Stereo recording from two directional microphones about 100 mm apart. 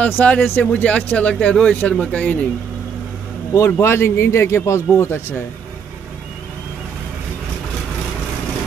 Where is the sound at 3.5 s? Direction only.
25° left (ahead or behind).